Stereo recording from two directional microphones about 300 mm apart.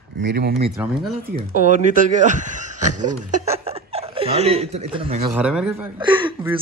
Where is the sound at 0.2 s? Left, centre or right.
Right.